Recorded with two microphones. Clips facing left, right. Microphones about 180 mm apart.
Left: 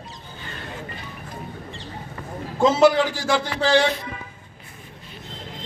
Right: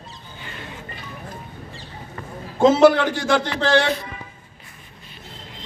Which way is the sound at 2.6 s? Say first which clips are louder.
Right 3 dB; 55° right (ahead or behind).